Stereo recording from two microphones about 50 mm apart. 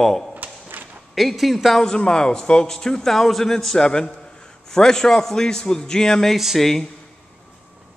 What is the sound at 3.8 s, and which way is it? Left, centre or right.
A man's voice, centre.